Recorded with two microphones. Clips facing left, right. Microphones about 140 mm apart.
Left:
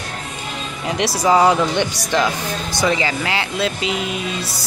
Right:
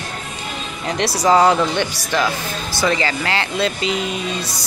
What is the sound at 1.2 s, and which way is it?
Speech, 10° left (ahead or behind).